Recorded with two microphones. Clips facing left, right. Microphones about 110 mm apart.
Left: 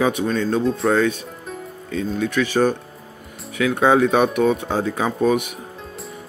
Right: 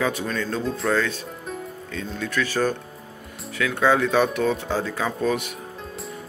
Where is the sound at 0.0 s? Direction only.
20° left (ahead or behind).